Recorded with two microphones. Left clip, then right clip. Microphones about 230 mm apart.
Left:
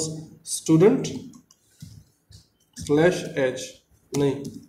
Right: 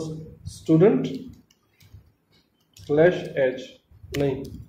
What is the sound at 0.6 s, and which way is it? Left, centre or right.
Speech, left.